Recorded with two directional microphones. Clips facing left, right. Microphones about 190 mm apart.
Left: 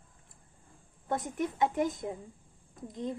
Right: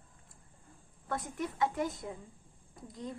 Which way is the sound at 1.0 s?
20° left (ahead or behind).